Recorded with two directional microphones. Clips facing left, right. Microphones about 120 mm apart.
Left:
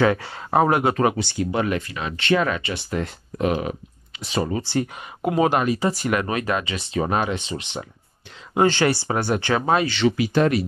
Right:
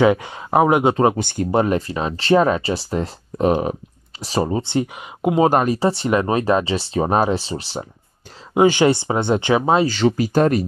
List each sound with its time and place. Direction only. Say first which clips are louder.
0.0 s speech: right 4 dB; 15° right (ahead or behind)
1.1 s speech: right 5 dB; 45° right (ahead or behind)
4.6 s speech: right 3 dB; 20° right (ahead or behind)
5.5 s speech: right 4 dB; 40° right (ahead or behind)
8.5 s speech: right 4 dB; 10° right (ahead or behind)
9.8 s speech: right 3 dB; 40° right (ahead or behind)